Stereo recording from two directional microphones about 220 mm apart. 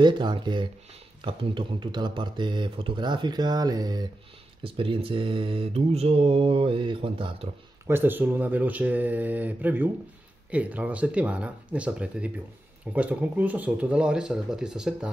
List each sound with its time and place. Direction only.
0.0 s mantra: 20° right (ahead or behind)
7.9 s speech: 10° right (ahead or behind)